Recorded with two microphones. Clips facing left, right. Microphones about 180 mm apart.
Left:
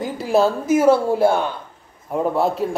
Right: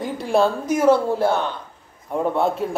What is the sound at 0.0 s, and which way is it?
A woman's voice, centre (ahead or behind).